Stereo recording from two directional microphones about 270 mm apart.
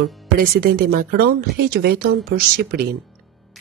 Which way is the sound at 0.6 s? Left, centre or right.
Right.